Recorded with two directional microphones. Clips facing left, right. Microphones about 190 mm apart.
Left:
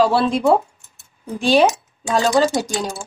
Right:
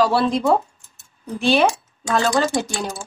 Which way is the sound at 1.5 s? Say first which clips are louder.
Left 4 dB; 20° left (ahead or behind).